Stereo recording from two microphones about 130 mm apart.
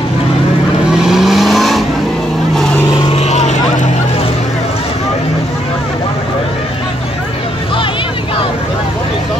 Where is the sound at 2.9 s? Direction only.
35° left (ahead or behind).